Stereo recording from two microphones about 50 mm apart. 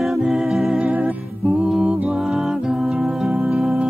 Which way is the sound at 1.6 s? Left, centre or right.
Centre.